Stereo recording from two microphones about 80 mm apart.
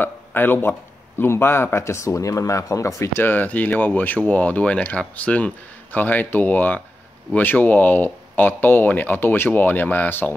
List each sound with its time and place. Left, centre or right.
0.0 s speech: left
3.3 s speech: left